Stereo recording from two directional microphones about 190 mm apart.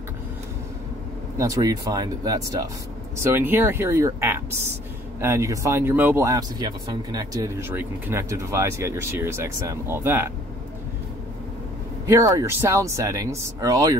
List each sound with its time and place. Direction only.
1.4 s speech: 20° right (ahead or behind)
12.1 s speech: 15° right (ahead or behind)